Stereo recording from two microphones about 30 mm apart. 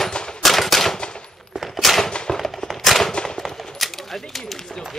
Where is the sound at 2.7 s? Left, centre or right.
Centre.